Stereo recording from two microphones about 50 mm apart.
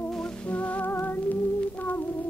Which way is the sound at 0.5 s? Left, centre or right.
Left.